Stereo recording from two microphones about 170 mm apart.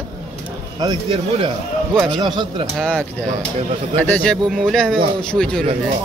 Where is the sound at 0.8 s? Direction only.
30° right (ahead or behind).